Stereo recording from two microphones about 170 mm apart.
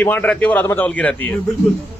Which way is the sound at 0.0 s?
10° left (ahead or behind).